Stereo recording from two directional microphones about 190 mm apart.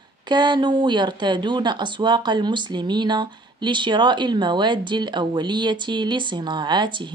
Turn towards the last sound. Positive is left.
turn(degrees=-25)  # may be behind; listen again after turning